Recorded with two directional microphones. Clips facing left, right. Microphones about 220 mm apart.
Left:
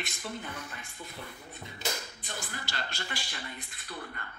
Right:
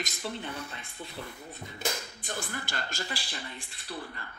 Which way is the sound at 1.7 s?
55° right (ahead or behind).